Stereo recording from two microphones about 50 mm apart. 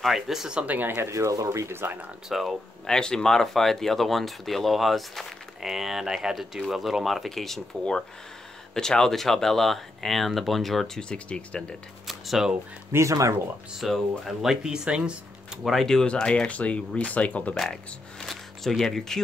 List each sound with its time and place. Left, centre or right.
0.0 s speech: centre
0.7 s speech: right
1.1 s speech: right
1.7 s speech: right
2.2 s speech: centre
2.9 s speech: centre
8.7 s speech: centre
11.0 s speech: centre
12.1 s a sound: centre
12.9 s speech: right
13.7 s speech: centre
15.6 s speech: centre; by 17.6 s left
18.2 s a sound: centre